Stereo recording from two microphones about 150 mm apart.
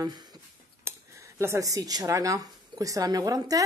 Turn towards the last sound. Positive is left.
turn(degrees=-25)  # may be behind; listen again after turning